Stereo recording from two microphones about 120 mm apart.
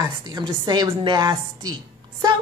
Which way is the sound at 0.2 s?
40° right (ahead or behind).